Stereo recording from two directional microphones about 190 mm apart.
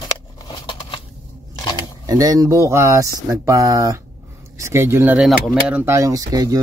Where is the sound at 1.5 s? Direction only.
20° left (ahead or behind).